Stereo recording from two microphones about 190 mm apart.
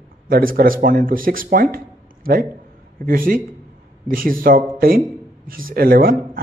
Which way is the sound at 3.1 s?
50° right (ahead or behind).